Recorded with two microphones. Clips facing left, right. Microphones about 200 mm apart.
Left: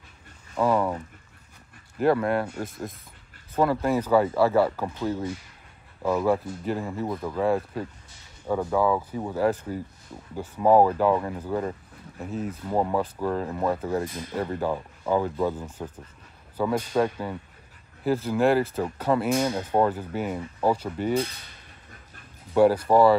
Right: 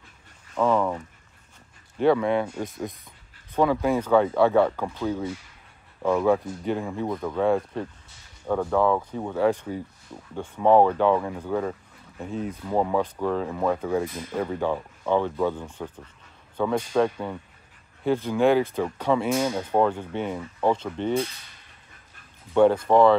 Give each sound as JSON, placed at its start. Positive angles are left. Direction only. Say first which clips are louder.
{"t": 0.6, "sound": "speech", "louder": "right 1 dB", "side_deg": 5}
{"t": 2.0, "sound": "speech", "louder": "right 2 dB", "side_deg": 5}
{"t": 22.5, "sound": "speech", "louder": "right 1 dB", "side_deg": 5}